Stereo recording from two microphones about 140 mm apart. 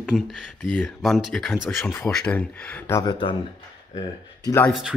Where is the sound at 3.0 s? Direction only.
35° left (ahead or behind).